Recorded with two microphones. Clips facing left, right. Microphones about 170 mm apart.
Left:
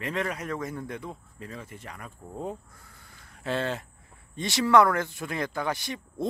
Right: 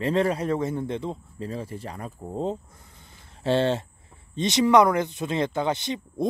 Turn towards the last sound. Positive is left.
turn(degrees=-20)  # may be behind; listen again after turning